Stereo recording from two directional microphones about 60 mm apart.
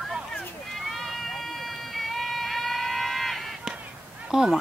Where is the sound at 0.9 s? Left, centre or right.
Centre.